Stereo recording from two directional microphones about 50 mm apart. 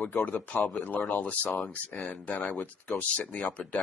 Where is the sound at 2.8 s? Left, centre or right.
Left.